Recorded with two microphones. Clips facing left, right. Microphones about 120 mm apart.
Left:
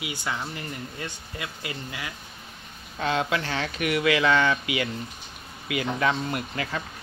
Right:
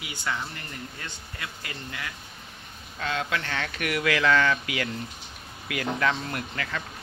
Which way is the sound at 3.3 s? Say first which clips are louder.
Left 3 dB; 15° left (ahead or behind).